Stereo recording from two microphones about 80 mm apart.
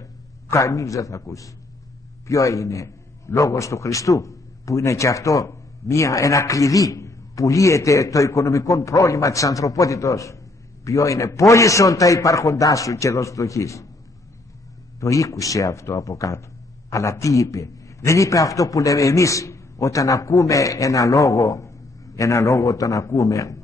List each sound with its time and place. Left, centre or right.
0.0 s a man's voice: left
15.0 s a man's voice: left